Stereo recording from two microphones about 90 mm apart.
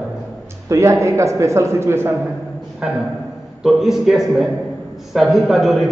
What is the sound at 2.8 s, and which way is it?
A man's voice, 10° right (ahead or behind).